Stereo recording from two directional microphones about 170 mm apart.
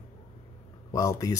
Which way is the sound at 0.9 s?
20° left (ahead or behind).